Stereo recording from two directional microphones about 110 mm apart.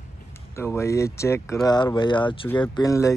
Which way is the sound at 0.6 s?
25° left (ahead or behind).